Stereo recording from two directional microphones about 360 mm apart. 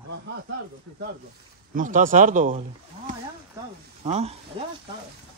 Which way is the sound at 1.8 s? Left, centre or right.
Right.